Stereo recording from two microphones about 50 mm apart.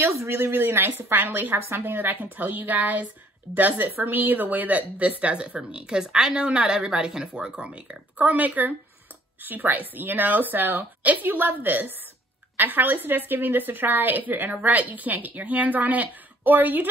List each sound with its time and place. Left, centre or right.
0.0 s speech: right
0.4 s a woman's voice: right